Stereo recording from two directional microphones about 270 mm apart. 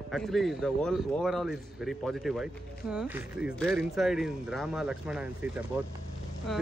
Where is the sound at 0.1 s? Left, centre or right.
Centre.